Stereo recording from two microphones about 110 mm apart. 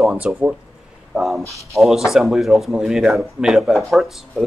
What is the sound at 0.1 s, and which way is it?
Speech, 10° right (ahead or behind).